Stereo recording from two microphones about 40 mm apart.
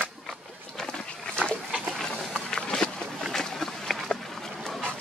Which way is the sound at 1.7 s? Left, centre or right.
Centre.